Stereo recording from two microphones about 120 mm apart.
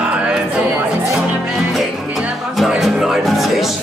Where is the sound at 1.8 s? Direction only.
Centre (ahead or behind).